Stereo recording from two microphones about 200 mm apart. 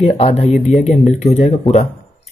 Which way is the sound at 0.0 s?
35° left (ahead or behind).